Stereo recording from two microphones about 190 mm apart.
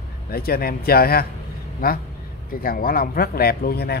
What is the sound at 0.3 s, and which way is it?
Speech, 50° left (ahead or behind).